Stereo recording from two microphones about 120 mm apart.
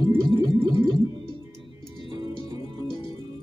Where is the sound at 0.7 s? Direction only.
45° right (ahead or behind).